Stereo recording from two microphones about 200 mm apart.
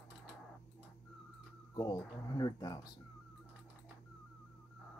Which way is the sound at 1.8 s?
20° left (ahead or behind).